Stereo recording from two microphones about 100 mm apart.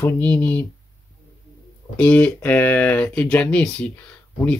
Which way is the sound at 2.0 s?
15° left (ahead or behind).